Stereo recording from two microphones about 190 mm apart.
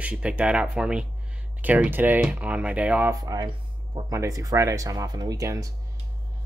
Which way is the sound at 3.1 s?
20° right (ahead or behind).